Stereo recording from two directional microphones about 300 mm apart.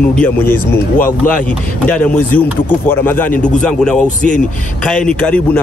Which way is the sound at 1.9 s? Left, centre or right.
Centre.